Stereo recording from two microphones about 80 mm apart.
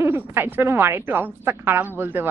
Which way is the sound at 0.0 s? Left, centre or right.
Right.